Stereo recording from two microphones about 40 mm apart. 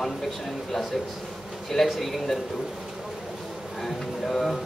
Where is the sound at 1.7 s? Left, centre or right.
Centre.